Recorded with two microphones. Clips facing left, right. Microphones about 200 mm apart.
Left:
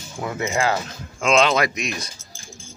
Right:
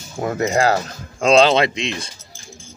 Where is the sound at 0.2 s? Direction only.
40° right (ahead or behind); by 2.0 s 25° right (ahead or behind).